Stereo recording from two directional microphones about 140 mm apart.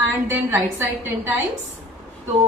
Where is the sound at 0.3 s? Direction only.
15° right (ahead or behind).